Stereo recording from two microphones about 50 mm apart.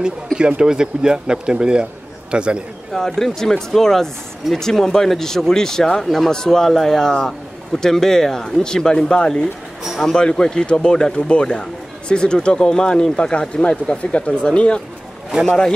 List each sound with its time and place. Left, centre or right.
0.4 s a man's voice: centre
2.9 s speech: centre